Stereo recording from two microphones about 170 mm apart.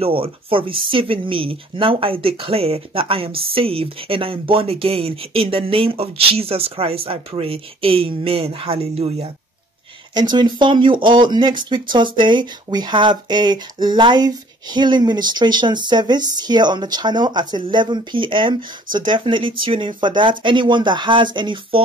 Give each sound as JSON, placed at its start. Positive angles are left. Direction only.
{"t": 0.0, "sound": "speech", "side_deg": -35}
{"t": 10.3, "sound": "speech", "side_deg": -25}